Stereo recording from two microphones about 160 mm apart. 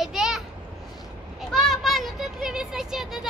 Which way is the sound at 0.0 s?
5° right (ahead or behind).